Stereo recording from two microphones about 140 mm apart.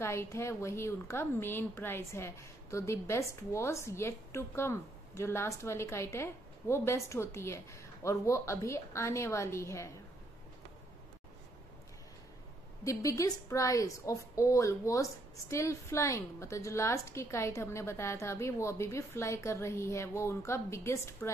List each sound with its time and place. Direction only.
0.0 s a woman's voice: 20° left (ahead or behind)
12.8 s a woman's voice: 25° left (ahead or behind)